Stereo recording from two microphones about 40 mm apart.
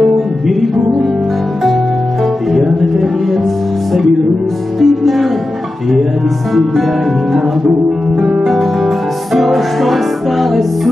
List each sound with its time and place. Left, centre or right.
2.5 s music: centre
4.7 s music: centre
8.2 s music: centre
8.5 s music: centre